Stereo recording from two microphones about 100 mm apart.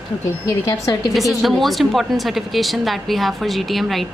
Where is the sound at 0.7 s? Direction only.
35° left (ahead or behind).